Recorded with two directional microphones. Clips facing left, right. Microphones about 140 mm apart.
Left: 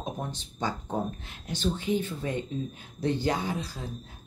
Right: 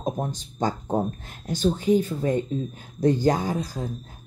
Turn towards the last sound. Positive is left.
turn(degrees=-45)  # may be behind; listen again after turning